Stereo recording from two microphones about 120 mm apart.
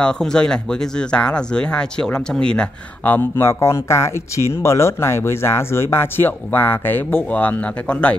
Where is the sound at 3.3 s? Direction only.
25° left (ahead or behind).